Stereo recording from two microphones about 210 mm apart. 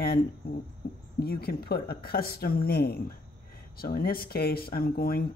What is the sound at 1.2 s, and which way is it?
Speech, 45° left (ahead or behind).